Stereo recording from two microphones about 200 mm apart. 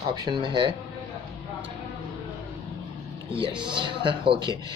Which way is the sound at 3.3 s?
25° right (ahead or behind).